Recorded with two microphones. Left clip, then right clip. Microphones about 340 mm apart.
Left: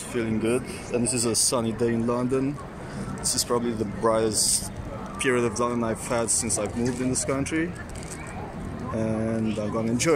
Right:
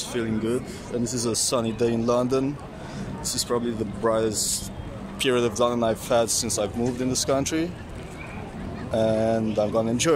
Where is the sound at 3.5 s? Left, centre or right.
Centre.